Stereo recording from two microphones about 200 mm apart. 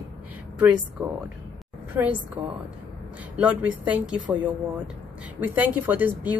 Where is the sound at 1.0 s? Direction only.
Centre (ahead or behind).